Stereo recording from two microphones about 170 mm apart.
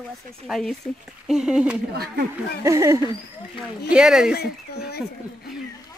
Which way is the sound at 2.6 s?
20° right (ahead or behind).